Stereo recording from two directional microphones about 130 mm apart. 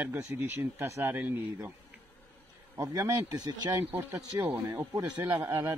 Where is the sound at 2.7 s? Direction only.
30° right (ahead or behind).